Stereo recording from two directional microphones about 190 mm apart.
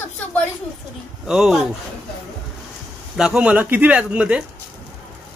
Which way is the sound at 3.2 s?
5° right (ahead or behind).